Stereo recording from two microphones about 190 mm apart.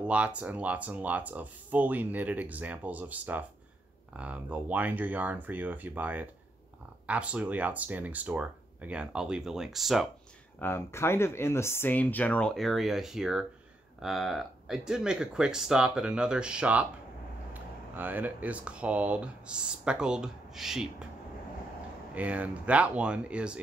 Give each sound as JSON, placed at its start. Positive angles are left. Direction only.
{"t": 0.0, "sound": "speech", "side_deg": -5}
{"t": 10.6, "sound": "speech", "side_deg": 10}
{"t": 22.1, "sound": "speech", "side_deg": -5}